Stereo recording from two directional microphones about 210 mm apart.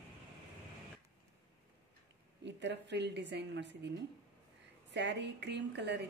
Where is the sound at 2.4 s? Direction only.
55° right (ahead or behind).